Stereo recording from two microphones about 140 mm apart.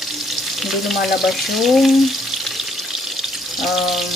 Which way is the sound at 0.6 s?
Centre (ahead or behind).